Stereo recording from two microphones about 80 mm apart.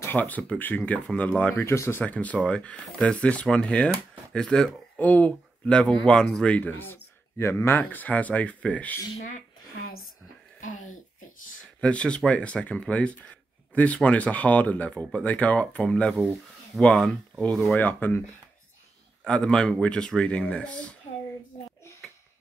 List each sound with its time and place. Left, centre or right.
0.0 s speech: left
1.6 s speech: left
2.0 s speech: centre
4.9 s speech: centre
11.8 s speech: centre
17.7 s speech: left
19.2 s speech: centre